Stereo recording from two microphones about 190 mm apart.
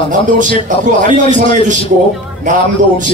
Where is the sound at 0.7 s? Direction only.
45° right (ahead or behind).